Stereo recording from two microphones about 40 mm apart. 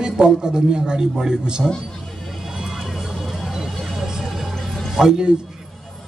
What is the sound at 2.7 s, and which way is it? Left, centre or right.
Vehicle, centre.